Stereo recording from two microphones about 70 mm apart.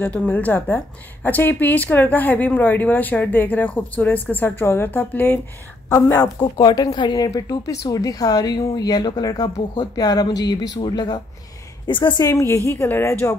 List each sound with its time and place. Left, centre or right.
0.0 s a woman's voice: left
6.4 s speech: left
7.2 s a woman's voice: left
12.3 s a woman's voice: left